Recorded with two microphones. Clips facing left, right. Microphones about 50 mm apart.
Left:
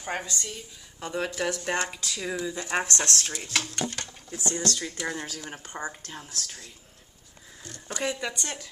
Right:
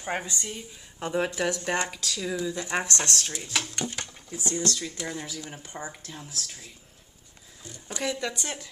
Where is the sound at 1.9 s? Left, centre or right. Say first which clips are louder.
Right 1 dB; centre.